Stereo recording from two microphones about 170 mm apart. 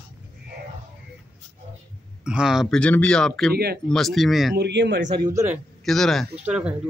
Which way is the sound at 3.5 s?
65° right (ahead or behind).